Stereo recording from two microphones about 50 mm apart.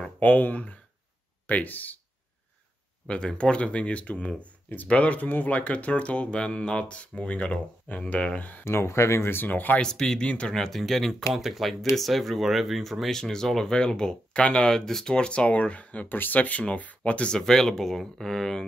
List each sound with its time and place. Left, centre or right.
0.2 s speech: left
3.1 s speech: centre; by 8.6 s left
8.6 s speech: left
9.3 s speech: left
9.8 s speech: centre
10.2 s speech: left
17.4 s speech: centre